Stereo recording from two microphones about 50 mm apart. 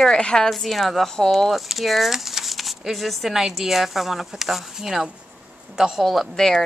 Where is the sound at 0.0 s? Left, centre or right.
Centre.